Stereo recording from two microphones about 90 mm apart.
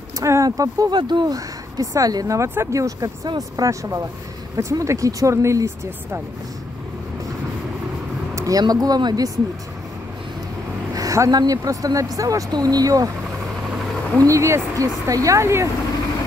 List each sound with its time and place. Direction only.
0.2 s speech: 35° right (ahead or behind)
0.9 s speech: 55° right (ahead or behind); by 5.7 s 35° right (ahead or behind)
8.4 s speech: 40° right (ahead or behind)
10.9 s speech: 40° right (ahead or behind)
14.1 s speech: 35° right (ahead or behind)